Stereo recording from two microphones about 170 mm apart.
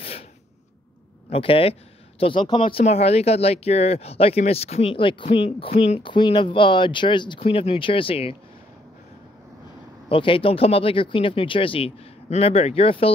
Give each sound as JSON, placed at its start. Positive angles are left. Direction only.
{"t": 1.3, "sound": "speech", "side_deg": 35}
{"t": 10.0, "sound": "speech", "side_deg": 30}